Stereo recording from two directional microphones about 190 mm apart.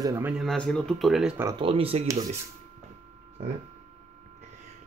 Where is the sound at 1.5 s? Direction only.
30° right (ahead or behind).